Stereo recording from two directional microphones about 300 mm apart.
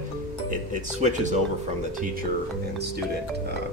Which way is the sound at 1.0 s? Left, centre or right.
Right.